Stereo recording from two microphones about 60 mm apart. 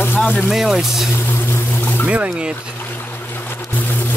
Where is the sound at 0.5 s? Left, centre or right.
Centre.